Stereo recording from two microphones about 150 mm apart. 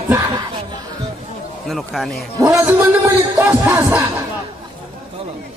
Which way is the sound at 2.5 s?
15° right (ahead or behind).